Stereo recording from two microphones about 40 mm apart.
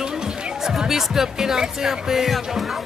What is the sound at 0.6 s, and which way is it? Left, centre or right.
Speech, centre.